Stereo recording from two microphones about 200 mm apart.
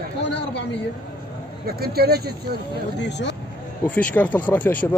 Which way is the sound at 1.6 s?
50° right (ahead or behind).